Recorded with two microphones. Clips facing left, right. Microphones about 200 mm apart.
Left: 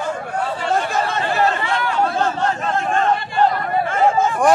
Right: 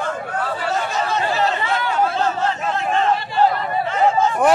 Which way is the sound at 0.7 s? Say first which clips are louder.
Left 3 dB; 50° left (ahead or behind).